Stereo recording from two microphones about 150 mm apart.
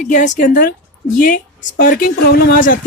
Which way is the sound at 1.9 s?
85° left.